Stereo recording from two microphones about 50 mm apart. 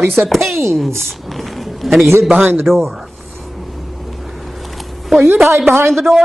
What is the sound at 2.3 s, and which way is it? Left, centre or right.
Speech, right.